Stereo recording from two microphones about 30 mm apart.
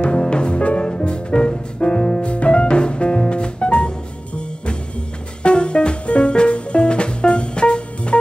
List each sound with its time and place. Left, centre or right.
0.0 s music: left
5.4 s music: left